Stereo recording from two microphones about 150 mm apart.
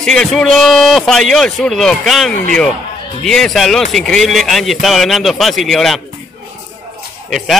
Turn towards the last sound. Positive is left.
turn(degrees=0)  # may be behind; listen again after turning